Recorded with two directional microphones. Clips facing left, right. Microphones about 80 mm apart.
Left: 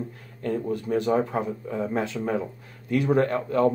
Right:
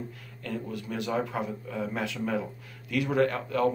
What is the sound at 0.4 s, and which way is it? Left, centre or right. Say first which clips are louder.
Speech: left 8 dB; left.